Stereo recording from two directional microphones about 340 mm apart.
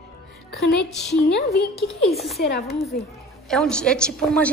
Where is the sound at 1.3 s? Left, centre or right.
Left.